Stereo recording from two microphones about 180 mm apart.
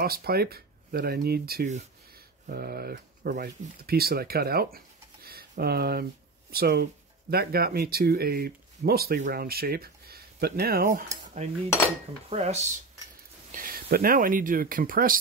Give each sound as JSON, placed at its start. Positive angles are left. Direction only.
{"t": 0.0, "sound": "speech", "side_deg": -60}
{"t": 11.3, "sound": "speech", "side_deg": -40}
{"t": 13.5, "sound": "speech", "side_deg": -50}